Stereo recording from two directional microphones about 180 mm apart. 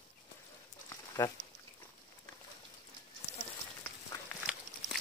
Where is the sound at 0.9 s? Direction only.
20° left (ahead or behind).